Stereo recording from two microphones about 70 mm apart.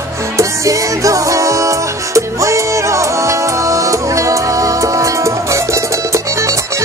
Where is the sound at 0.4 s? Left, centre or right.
Right.